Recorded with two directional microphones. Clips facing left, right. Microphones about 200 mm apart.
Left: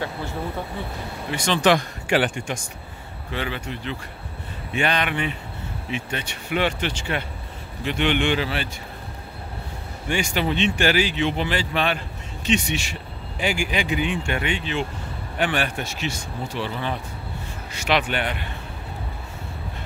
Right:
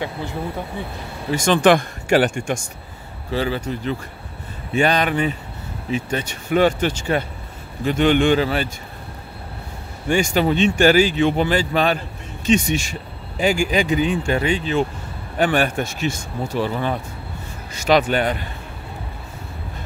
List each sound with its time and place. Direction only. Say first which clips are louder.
1.3 s speech: right 5 dB; 50° right (ahead or behind)
3.3 s speech: right 7 dB; 35° right (ahead or behind)
10.0 s speech: right 6 dB; 45° right (ahead or behind)